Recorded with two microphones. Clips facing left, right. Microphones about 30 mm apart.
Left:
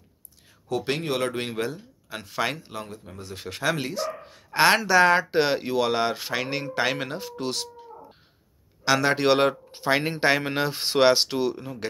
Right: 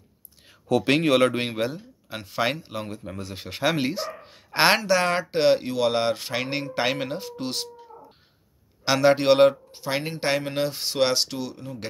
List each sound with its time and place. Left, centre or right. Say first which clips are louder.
0.7 s speech: right 6 dB; right
1.3 s speech: right 2 dB; right; by 2.8 s centre
2.9 s speech: right 5 dB; right
3.3 s a man's voice: right 2 dB; right
4.7 s speech: left 3 dB; centre
8.8 s a man's voice: right 2 dB; centre
9.7 s a sound: left 4 dB; left
10.5 s speech: left 2 dB; centre